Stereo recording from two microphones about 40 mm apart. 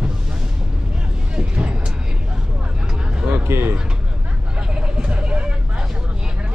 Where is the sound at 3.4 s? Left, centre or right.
Right.